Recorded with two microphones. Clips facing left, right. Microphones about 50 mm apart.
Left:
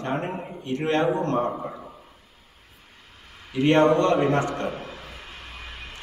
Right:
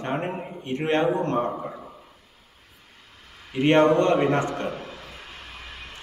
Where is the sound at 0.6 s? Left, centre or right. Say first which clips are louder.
Even; right.